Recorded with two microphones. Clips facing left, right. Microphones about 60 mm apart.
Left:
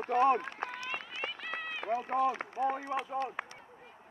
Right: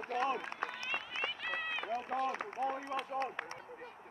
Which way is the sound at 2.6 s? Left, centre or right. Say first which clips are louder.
Left 5 dB; left.